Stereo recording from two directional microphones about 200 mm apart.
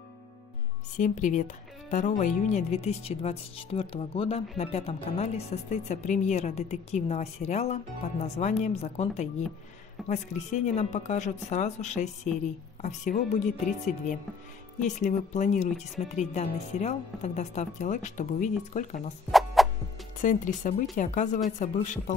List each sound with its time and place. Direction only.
0.9 s a woman's voice: 40° left (ahead or behind)
14.8 s a woman's voice: 40° left (ahead or behind)
19.3 s fowl: centre (ahead or behind)
20.2 s a woman's voice: 40° left (ahead or behind)